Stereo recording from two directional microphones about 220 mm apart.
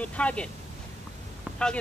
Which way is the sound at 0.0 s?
5° left (ahead or behind).